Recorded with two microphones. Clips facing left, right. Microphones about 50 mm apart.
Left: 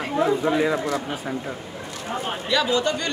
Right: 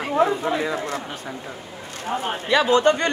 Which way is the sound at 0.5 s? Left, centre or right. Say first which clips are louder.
Left 3 dB; centre.